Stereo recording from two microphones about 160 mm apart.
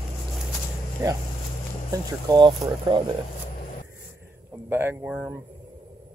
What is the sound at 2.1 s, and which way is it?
Speech, 25° right (ahead or behind).